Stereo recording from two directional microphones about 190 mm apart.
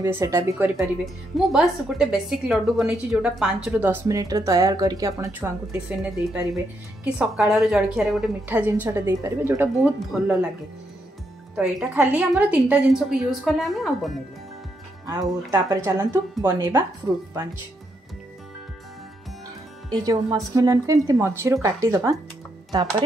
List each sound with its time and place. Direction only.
0.0 s a woman's voice: 15° right (ahead or behind)
1.0 s a woman's voice: centre (ahead or behind)
11.5 s a woman's voice: 5° right (ahead or behind)
15.0 s a woman's voice: 20° right (ahead or behind)
20.0 s a woman's voice: 20° right (ahead or behind)